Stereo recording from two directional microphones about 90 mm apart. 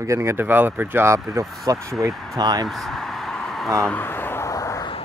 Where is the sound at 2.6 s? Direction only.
Centre (ahead or behind).